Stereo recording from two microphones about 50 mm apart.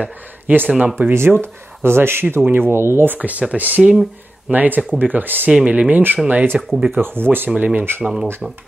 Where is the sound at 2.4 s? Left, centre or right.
Right.